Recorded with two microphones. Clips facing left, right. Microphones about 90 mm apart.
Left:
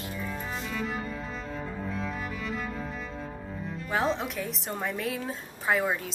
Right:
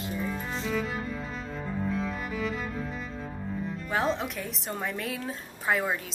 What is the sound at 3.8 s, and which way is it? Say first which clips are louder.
Speech: left 1 dB; centre (ahead or behind).